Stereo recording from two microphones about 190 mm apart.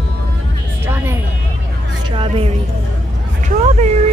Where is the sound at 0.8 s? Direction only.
15° right (ahead or behind).